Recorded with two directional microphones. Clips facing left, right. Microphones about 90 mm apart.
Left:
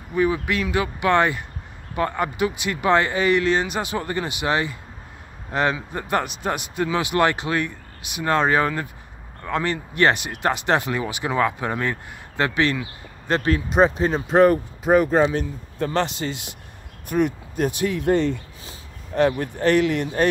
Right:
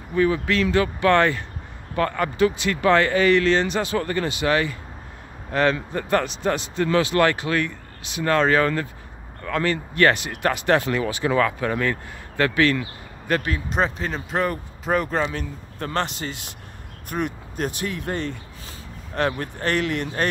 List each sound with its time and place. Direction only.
0.1 s speech: 15° left (ahead or behind)
13.3 s speech: 35° left (ahead or behind)
13.7 s speech: 15° left (ahead or behind)
15.8 s speech: 50° right (ahead or behind)
16.2 s speech: 20° left (ahead or behind)
17.6 s speech: 20° left (ahead or behind)
19.1 s speech: 60° right (ahead or behind)